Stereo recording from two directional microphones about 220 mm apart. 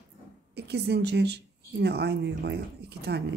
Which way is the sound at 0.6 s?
50° right (ahead or behind).